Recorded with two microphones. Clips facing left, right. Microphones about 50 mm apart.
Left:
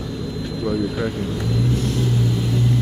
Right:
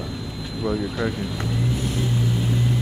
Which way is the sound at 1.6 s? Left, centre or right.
Centre.